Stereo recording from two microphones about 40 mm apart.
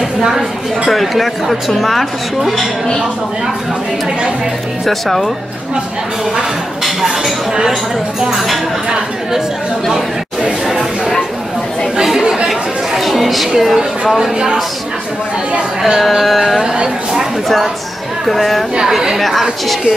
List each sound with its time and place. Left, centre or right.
0.2 s speech: centre
0.8 s a woman's voice: centre
4.8 s a woman's voice: centre
6.8 s a sound: centre
8.2 s a woman's voice: centre
10.7 s a sound: centre
12.0 s chatter: centre
13.7 s speech: centre
15.8 s a woman's voice: centre
16.6 s speech: right
18.2 s a woman's voice: centre
18.8 s a woman's voice: centre